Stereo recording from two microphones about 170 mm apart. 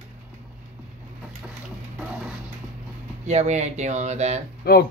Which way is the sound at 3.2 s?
40° right (ahead or behind).